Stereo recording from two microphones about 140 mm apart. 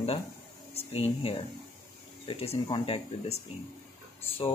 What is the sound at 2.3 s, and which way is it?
Speech, 40° left (ahead or behind).